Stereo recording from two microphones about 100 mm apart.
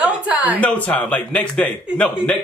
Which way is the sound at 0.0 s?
15° right (ahead or behind).